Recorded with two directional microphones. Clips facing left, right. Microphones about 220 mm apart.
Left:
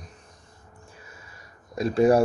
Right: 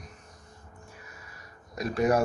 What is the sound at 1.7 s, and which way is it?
Speech, 30° left (ahead or behind).